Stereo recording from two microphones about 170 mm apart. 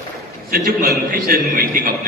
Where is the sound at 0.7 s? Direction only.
70° right (ahead or behind).